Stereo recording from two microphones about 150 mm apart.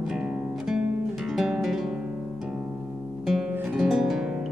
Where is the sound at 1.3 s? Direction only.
Centre (ahead or behind).